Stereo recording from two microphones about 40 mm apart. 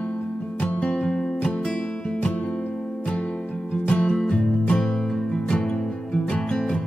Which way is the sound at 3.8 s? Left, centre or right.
Left.